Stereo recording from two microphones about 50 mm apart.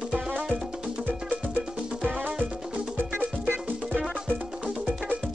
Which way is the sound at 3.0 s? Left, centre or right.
Right.